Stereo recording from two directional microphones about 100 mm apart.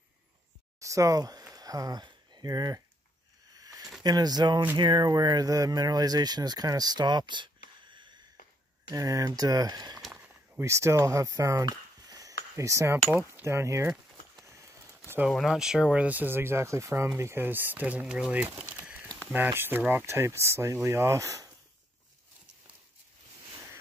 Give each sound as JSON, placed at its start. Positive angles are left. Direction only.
{"t": 0.7, "sound": "a sound", "side_deg": -35}
{"t": 4.0, "sound": "speech", "side_deg": -45}
{"t": 8.8, "sound": "speech", "side_deg": -35}
{"t": 10.6, "sound": "speech", "side_deg": -30}
{"t": 15.2, "sound": "speech", "side_deg": 0}